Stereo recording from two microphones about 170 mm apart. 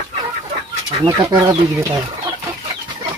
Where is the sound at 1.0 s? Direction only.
20° right (ahead or behind).